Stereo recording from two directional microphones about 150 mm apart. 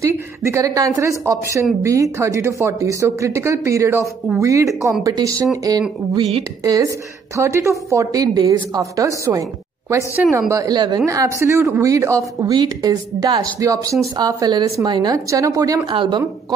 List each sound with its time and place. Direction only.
0.0 s a woman's voice: 20° right (ahead or behind)